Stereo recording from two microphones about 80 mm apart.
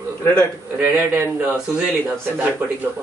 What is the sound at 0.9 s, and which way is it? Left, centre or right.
Speech, right.